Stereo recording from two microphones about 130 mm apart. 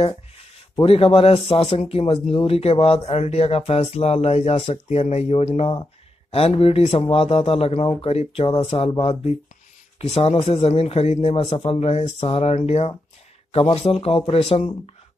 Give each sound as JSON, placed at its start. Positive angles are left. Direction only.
{"t": 0.7, "sound": "speech", "side_deg": 45}